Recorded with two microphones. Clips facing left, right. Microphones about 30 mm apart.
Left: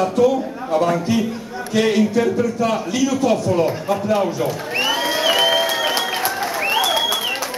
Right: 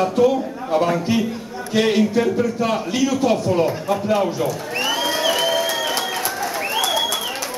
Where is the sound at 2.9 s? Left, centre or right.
Right.